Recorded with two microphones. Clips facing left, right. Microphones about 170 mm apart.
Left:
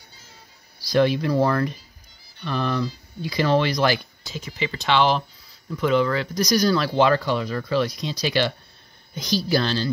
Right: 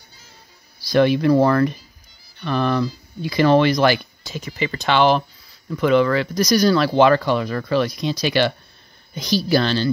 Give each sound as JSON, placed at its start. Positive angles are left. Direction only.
{"t": 0.8, "sound": "speech", "side_deg": -65}
{"t": 5.8, "sound": "speech", "side_deg": -65}